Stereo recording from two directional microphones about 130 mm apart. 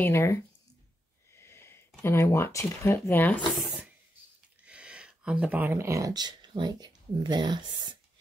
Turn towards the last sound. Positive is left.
turn(degrees=-35)  # may be behind; listen again after turning